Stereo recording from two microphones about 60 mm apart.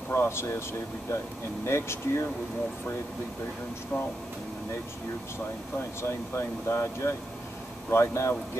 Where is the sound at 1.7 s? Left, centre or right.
Left.